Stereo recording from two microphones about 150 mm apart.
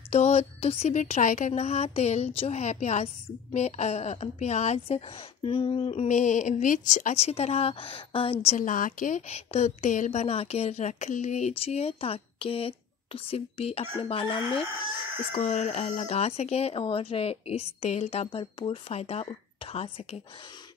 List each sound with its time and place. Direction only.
0.1 s a woman's voice: 45° left (ahead or behind)
6.0 s speech: 55° left (ahead or behind)
7.2 s a woman's voice: 45° left (ahead or behind)
8.5 s speech: 65° left (ahead or behind)
9.3 s a woman's voice: 45° left (ahead or behind)